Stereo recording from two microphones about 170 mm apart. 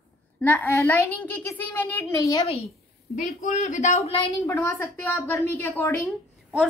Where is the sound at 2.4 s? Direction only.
35° left (ahead or behind).